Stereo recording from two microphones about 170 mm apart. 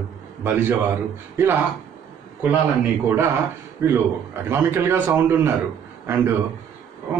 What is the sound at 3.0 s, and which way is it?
Speech, 15° right (ahead or behind).